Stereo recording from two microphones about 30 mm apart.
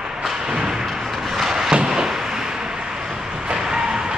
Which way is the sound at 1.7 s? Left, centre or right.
Right.